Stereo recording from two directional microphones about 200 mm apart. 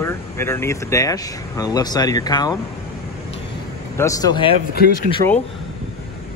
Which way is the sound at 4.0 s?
15° left (ahead or behind).